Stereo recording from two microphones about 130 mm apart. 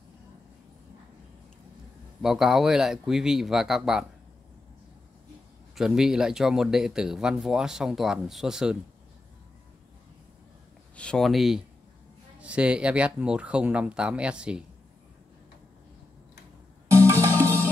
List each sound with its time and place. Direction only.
2.2 s speech: 5° right (ahead or behind)
5.8 s speech: 5° right (ahead or behind)
11.0 s speech: 5° left (ahead or behind)
16.9 s music: 20° right (ahead or behind)